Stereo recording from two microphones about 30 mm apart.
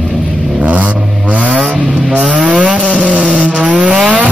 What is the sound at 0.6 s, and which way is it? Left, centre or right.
Vehicle, right.